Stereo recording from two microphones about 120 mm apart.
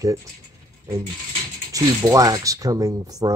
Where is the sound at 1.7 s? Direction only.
30° right (ahead or behind).